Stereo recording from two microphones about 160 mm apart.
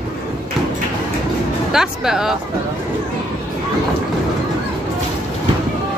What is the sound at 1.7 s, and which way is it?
Speech, 5° right (ahead or behind).